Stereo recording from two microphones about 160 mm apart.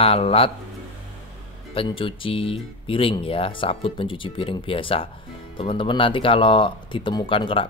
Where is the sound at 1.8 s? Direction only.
35° left (ahead or behind).